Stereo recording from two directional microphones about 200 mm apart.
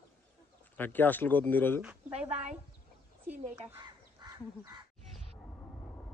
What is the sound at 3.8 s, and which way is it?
Crow, 20° right (ahead or behind).